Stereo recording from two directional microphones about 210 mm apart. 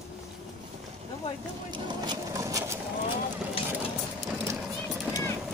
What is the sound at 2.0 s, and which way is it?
Sewing machine, 20° right (ahead or behind).